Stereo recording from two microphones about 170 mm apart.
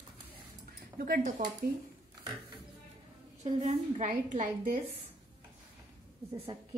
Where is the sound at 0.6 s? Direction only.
55° right (ahead or behind).